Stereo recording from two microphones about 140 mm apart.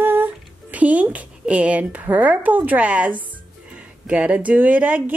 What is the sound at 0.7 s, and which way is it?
A woman's voice, 10° right (ahead or behind).